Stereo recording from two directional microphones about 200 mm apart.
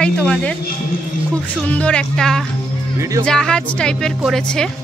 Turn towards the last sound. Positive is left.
turn(degrees=5)  # may be behind; listen again after turning